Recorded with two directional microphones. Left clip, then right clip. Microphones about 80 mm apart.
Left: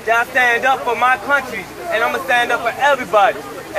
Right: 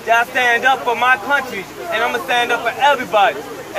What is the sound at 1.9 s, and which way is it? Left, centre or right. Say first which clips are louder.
Speech: left 1 dB; centre.